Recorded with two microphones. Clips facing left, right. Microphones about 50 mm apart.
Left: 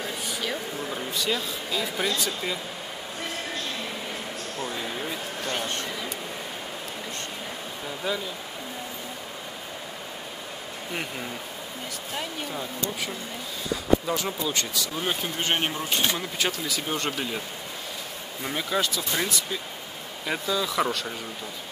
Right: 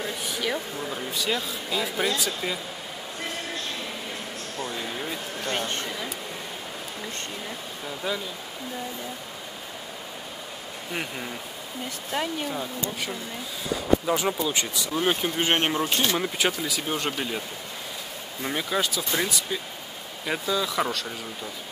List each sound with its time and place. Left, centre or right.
0.0 s speech: centre
4.6 s a sound: centre
7.8 s speech: centre
10.9 s speech: centre
14.0 s speech: centre
18.4 s speech: centre